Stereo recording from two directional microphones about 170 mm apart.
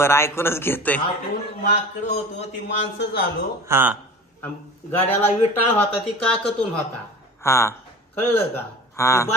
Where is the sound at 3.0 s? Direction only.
70° left (ahead or behind).